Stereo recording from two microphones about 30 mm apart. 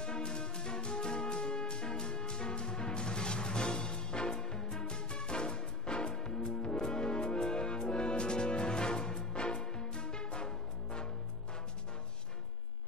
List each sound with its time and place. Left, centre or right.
0.0 s music: left